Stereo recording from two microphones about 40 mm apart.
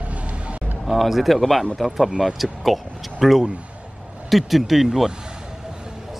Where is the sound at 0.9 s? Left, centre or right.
Centre.